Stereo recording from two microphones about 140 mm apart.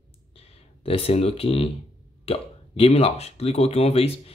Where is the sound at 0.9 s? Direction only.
45° left (ahead or behind).